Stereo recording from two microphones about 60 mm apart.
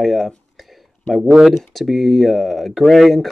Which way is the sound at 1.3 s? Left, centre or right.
Centre.